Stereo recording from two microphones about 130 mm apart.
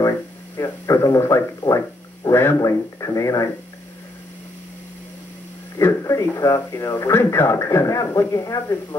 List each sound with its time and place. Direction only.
0.6 s speech: 25° left (ahead or behind)
5.8 s speech: 25° left (ahead or behind)